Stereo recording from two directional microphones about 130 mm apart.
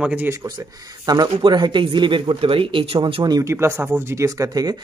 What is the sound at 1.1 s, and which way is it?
Speech, 35° right (ahead or behind).